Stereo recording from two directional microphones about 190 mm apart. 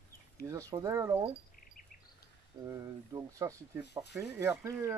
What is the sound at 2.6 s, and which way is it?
Speech, 20° right (ahead or behind).